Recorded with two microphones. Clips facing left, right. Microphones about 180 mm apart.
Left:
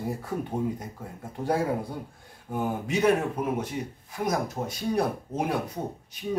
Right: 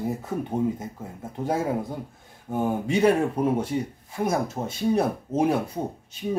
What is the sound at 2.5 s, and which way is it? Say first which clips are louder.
Speech: right 4 dB; 30° right (ahead or behind).